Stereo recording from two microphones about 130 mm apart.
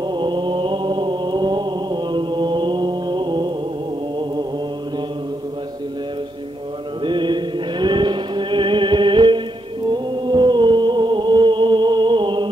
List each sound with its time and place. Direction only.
0.0 s mantra: 35° right (ahead or behind)
7.0 s music: 35° right (ahead or behind)
9.8 s chant: 35° right (ahead or behind)